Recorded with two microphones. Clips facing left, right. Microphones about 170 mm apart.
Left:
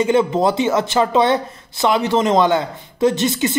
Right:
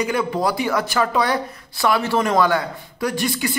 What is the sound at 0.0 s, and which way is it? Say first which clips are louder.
Speech: left 6 dB; 25° left (ahead or behind).